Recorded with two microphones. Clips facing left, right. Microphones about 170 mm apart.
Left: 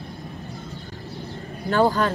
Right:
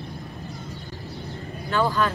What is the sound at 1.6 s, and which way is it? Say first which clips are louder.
Speech: left 3 dB; 40° left (ahead or behind).